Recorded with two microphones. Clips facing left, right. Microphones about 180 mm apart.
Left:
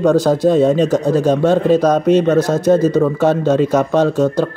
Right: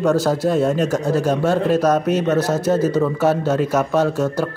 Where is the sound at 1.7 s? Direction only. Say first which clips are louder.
Left 5 dB; 5° right (ahead or behind).